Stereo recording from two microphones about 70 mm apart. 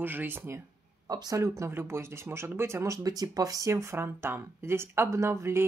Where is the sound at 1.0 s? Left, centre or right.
Right.